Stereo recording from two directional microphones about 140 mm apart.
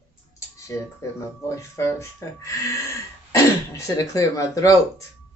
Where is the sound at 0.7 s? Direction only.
20° left (ahead or behind).